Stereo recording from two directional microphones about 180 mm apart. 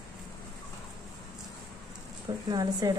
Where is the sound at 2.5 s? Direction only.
20° right (ahead or behind).